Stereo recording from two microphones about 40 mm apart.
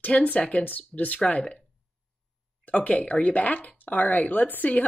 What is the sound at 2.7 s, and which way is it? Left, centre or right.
Speech, left.